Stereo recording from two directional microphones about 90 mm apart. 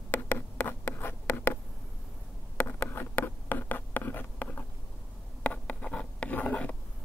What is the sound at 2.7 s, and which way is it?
Writing, 20° left (ahead or behind).